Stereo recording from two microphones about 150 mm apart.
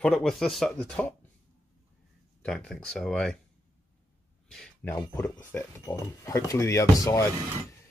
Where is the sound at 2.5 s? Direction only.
5° left (ahead or behind).